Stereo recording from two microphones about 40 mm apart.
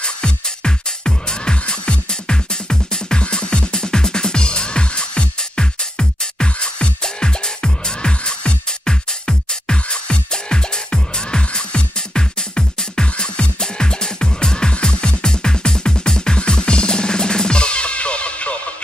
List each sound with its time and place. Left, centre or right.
0.0 s music: left